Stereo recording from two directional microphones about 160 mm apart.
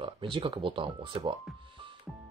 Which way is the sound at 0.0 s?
30° right (ahead or behind).